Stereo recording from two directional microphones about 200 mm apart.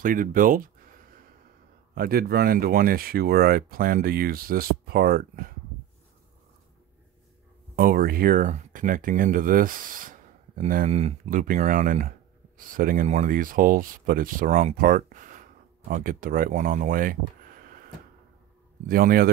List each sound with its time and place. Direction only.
0.0 s speech: 45° right (ahead or behind)
2.0 s speech: 50° right (ahead or behind)
7.7 s speech: 45° right (ahead or behind)